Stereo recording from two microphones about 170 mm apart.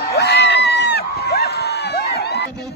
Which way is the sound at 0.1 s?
80° left.